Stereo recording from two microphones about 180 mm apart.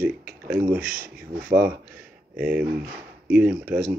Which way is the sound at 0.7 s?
50° right (ahead or behind).